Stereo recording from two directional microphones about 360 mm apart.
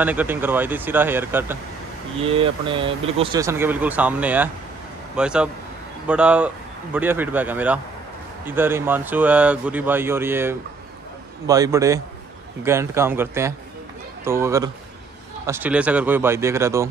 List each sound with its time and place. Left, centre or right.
0.0 s speech: centre